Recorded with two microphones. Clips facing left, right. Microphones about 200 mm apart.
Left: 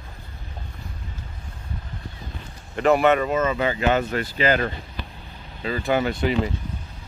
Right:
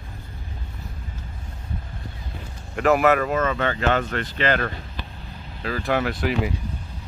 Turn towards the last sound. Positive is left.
turn(degrees=-5)  # may be behind; listen again after turning